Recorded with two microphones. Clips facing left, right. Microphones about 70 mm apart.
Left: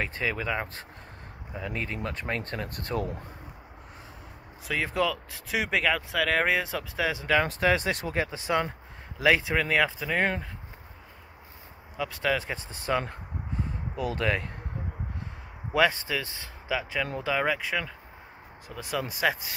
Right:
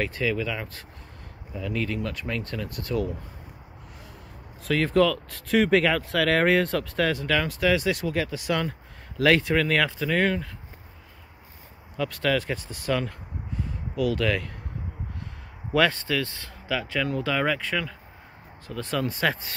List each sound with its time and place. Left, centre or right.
0.0 s speech: left
4.6 s speech: centre
7.4 s speech: left; by 10.1 s centre
10.1 s speech: left
12.0 s speech: centre
13.6 s a sound: left
15.7 s speech: centre